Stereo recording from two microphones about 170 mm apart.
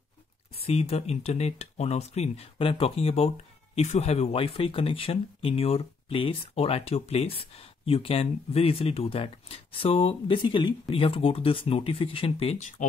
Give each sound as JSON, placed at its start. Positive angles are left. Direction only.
{"t": 0.6, "sound": "speech", "side_deg": 35}